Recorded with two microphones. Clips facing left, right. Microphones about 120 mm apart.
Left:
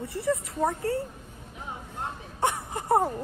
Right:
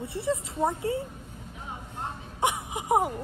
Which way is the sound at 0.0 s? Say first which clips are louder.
Left 1 dB; 25° right (ahead or behind).